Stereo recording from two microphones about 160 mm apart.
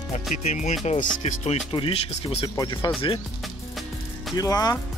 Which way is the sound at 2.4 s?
25° left (ahead or behind).